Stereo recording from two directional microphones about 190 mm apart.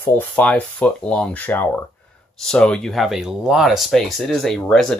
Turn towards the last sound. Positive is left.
turn(degrees=0)  # may be behind; listen again after turning